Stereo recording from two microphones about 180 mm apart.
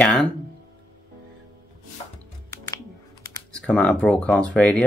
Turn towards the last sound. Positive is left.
turn(degrees=5)  # may be behind; listen again after turning